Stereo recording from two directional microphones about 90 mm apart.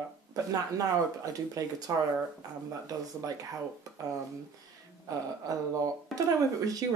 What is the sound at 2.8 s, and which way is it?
Speech, 45° right (ahead or behind).